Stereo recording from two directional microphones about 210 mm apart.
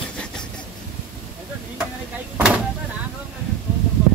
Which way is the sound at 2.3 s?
5° right (ahead or behind).